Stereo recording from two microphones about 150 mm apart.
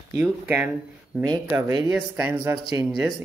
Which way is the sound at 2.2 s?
15° right (ahead or behind).